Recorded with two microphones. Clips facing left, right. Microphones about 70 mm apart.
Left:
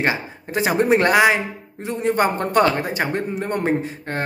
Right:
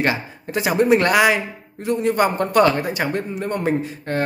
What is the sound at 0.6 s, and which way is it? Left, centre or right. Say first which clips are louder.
A man's voice: right 1 dB; left.